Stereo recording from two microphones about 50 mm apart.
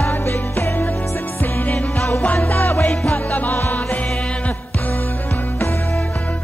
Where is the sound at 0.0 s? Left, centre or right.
Left.